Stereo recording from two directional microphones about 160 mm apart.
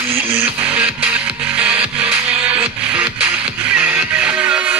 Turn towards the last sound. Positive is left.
turn(degrees=-5)  # may be behind; listen again after turning